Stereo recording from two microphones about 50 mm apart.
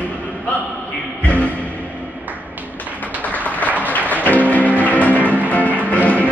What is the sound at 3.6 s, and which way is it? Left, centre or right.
Music, left.